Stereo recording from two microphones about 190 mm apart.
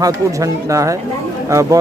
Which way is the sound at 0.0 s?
15° right (ahead or behind).